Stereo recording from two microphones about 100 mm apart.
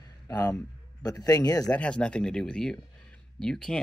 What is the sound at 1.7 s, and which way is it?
Speech, 10° left (ahead or behind).